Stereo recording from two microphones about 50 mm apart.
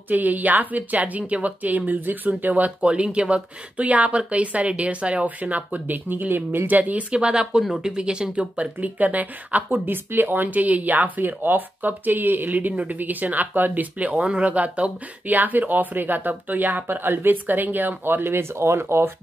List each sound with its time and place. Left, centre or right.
0.1 s speech: right
6.7 s speech: right
7.2 s speech: centre
8.8 s speech: right
16.8 s speech: right